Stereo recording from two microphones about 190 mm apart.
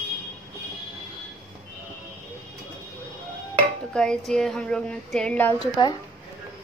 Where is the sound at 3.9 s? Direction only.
5° left (ahead or behind).